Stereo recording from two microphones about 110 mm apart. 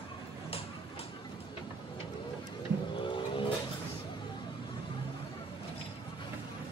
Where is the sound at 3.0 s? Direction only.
50° left (ahead or behind).